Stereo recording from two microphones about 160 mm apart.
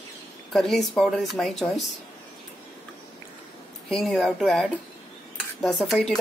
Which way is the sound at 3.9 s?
Centre (ahead or behind).